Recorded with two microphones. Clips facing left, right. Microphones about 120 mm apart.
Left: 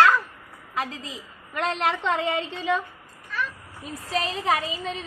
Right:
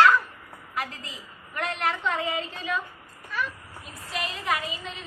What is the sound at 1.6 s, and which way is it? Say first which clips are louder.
A woman's voice: left 3 dB; 90° left.